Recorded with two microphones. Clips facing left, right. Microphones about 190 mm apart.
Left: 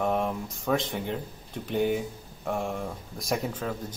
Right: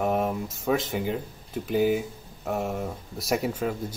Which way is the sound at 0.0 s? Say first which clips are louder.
Right 2 dB; 5° right (ahead or behind).